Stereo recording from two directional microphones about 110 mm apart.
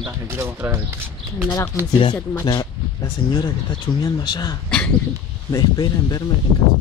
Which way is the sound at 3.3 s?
50° left (ahead or behind).